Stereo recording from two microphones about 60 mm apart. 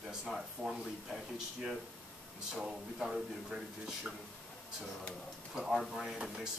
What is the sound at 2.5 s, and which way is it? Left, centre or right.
Speech, centre.